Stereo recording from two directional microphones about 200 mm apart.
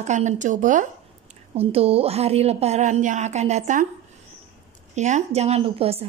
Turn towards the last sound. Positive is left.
turn(degrees=-30)  # may be behind; listen again after turning